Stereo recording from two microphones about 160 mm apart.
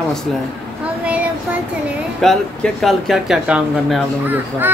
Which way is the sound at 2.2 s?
Centre (ahead or behind).